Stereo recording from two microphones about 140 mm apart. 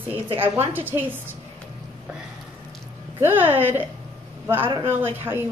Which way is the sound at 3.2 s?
15° right (ahead or behind).